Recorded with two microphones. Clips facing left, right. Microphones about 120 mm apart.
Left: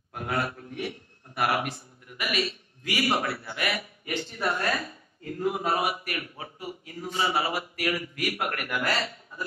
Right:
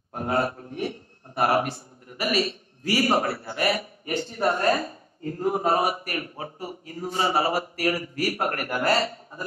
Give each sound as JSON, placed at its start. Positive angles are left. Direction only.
{"t": 0.1, "sound": "a man's voice", "side_deg": -35}